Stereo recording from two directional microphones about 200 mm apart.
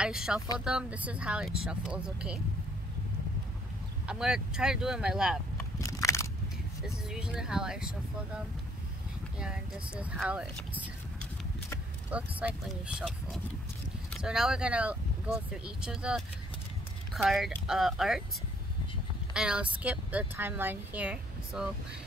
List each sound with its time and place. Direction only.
0.0 s speech: 5° right (ahead or behind)
4.1 s speech: 5° right (ahead or behind)
5.8 s crushing: 15° left (ahead or behind)
7.1 s speech: 5° right (ahead or behind)
9.4 s speech: 5° right (ahead or behind)
19.3 s speech: 5° right (ahead or behind)